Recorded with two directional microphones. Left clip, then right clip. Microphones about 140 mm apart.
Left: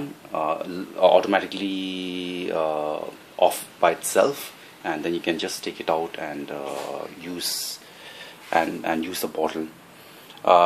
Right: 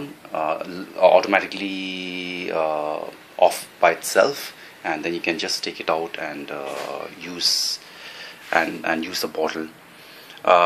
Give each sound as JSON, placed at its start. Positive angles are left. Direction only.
{"t": 0.3, "sound": "speech", "side_deg": 25}